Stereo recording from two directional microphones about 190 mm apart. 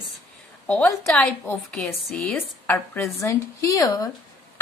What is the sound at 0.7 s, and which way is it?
A woman's voice, 5° left (ahead or behind).